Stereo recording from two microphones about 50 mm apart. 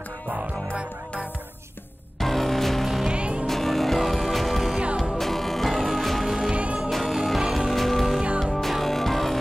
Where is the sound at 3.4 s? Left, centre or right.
Centre.